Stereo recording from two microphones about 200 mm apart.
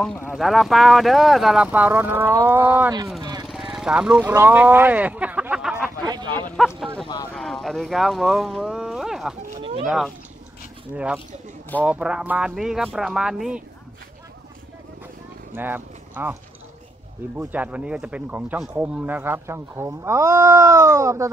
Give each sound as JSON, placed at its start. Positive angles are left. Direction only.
{"t": 0.0, "sound": "speech", "side_deg": 5}
{"t": 3.2, "sound": "vehicle", "side_deg": -20}
{"t": 3.7, "sound": "speech", "side_deg": -5}
{"t": 11.8, "sound": "speech", "side_deg": -5}
{"t": 15.5, "sound": "speech", "side_deg": -10}
{"t": 17.4, "sound": "speech", "side_deg": -10}